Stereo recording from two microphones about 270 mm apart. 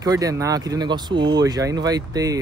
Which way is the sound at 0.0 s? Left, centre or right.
Centre.